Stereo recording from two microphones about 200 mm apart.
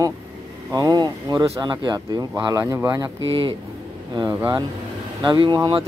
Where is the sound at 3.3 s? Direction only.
25° right (ahead or behind).